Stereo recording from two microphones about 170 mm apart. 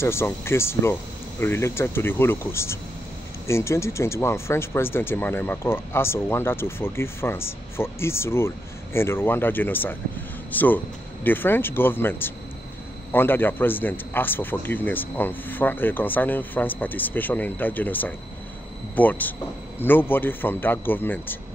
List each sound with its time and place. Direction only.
0.0 s speech: 15° left (ahead or behind)